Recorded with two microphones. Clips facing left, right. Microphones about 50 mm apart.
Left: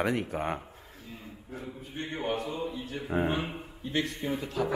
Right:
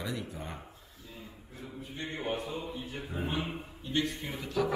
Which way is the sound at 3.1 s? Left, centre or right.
Left.